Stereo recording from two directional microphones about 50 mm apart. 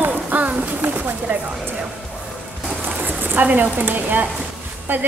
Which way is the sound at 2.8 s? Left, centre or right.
Right.